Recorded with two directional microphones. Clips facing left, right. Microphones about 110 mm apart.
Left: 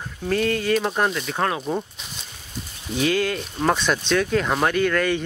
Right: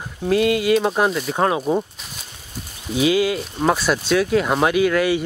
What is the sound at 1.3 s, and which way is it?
Speech, 20° right (ahead or behind).